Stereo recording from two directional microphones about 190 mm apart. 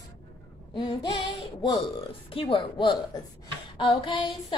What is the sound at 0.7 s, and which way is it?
A woman's voice, 25° left (ahead or behind).